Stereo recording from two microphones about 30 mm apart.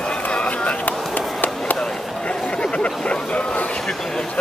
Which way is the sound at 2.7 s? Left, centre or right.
Left.